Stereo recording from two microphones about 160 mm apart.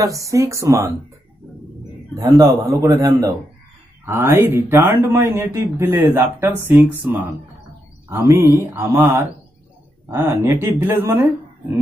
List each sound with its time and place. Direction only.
0.0 s a man's voice: 20° right (ahead or behind)
2.1 s a man's voice: 25° right (ahead or behind); by 7.2 s 5° right (ahead or behind)
8.1 s speech: 15° right (ahead or behind)